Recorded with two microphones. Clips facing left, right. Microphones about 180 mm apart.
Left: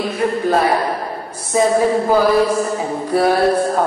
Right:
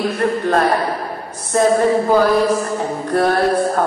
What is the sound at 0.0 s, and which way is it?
A woman's voice, 5° left (ahead or behind).